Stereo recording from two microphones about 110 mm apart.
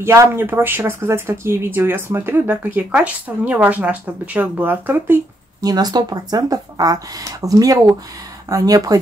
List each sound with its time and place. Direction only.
0.0 s speech: 25° right (ahead or behind)
5.6 s speech: 35° right (ahead or behind)